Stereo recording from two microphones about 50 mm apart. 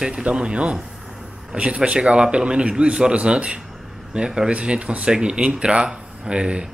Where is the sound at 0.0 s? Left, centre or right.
Centre.